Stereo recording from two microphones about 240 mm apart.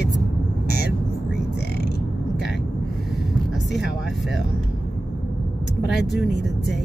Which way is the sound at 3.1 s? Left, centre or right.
Centre.